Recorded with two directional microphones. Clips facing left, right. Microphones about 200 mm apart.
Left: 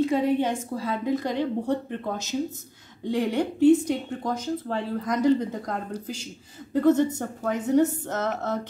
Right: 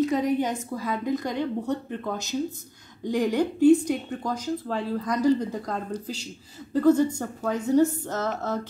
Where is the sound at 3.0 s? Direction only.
25° left (ahead or behind).